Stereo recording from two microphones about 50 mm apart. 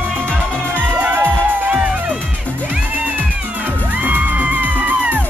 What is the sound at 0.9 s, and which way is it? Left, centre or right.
Music, right.